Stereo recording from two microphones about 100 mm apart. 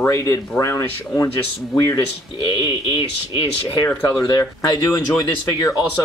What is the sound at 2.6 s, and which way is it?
Speech, 60° left (ahead or behind).